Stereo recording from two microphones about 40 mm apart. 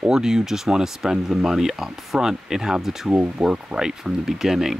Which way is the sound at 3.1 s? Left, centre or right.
Right.